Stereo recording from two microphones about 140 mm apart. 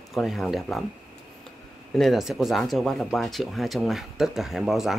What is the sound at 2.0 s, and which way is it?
Speech, centre (ahead or behind).